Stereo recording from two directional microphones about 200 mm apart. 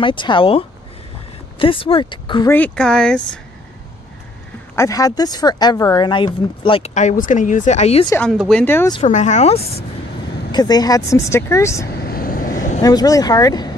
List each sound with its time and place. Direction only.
0.0 s speech: 25° left (ahead or behind)
2.5 s speech: 5° left (ahead or behind)
4.7 s speech: 15° left (ahead or behind); by 8.1 s 30° left (ahead or behind)
8.3 s speech: centre (ahead or behind)
9.0 s speech: 35° left (ahead or behind)
10.5 s speech: 20° left (ahead or behind)
11.9 s vehicle: 50° left (ahead or behind)
12.8 s speech: 20° left (ahead or behind)